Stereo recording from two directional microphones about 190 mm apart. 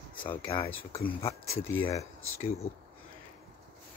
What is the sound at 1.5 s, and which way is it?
Speech, 90° left.